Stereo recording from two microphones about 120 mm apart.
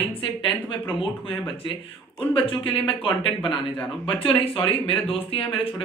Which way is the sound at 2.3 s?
45° left (ahead or behind).